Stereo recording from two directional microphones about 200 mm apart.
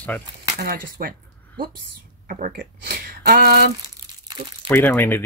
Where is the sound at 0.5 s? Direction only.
50° right (ahead or behind).